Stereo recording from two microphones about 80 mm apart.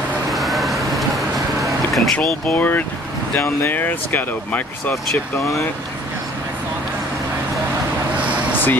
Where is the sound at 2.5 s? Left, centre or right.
Left.